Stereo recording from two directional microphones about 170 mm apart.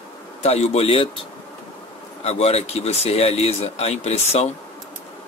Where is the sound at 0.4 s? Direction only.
40° left (ahead or behind).